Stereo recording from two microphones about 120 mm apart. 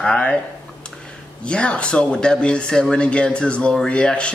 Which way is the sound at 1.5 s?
10° left (ahead or behind).